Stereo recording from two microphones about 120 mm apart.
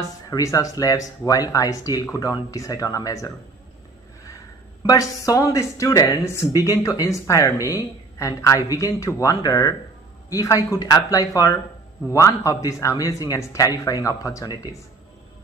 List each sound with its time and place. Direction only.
0.0 s speech: 30° left (ahead or behind)
4.8 s a woman's voice: 30° left (ahead or behind)